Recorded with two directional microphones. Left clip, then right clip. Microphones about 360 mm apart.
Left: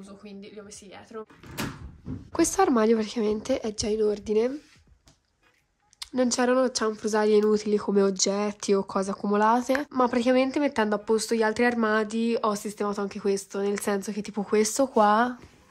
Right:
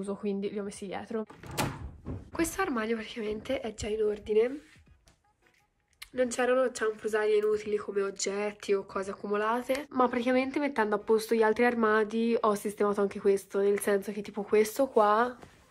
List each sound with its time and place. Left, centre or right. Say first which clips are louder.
0.0 s speech: right 11 dB; centre
2.3 s a woman's voice: left 8 dB; centre
5.9 s speech: left 4 dB; centre